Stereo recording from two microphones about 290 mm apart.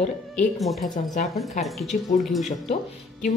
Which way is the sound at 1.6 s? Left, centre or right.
Centre.